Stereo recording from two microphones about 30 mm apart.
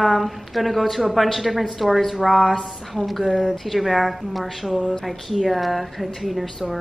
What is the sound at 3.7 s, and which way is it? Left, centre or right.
Speech, centre.